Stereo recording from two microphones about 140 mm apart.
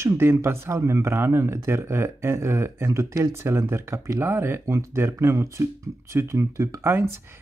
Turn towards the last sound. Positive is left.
turn(degrees=-15)  # may be behind; listen again after turning